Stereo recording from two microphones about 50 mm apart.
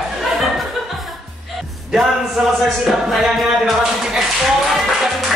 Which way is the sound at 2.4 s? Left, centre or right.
Centre.